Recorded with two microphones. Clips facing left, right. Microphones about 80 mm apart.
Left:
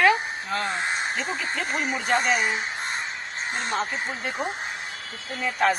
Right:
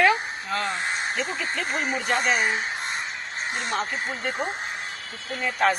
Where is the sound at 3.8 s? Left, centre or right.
Centre.